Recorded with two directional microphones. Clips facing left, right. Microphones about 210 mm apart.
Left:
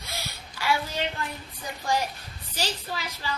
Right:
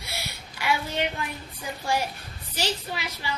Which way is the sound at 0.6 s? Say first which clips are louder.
Even; 15° right (ahead or behind).